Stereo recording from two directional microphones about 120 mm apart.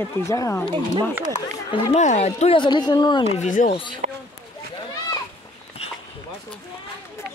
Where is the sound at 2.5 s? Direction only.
40° left (ahead or behind).